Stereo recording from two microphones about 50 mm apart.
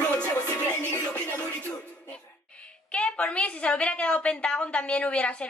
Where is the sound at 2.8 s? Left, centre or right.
Left.